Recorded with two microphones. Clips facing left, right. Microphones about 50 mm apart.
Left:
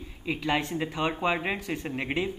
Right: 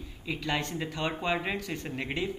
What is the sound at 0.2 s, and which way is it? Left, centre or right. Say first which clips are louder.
Speech: left 4 dB; centre.